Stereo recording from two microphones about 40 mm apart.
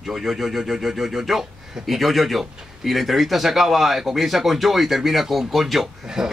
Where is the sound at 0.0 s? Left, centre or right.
Centre.